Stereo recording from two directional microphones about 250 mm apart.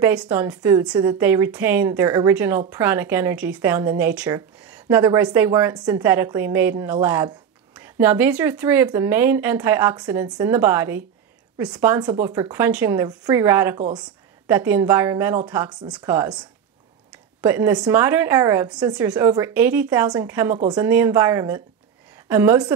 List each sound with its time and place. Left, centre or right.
0.0 s a woman's voice: centre
13.7 s speech: right
14.5 s a woman's voice: centre